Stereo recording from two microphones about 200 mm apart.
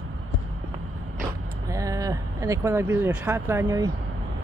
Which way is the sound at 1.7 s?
15° right (ahead or behind).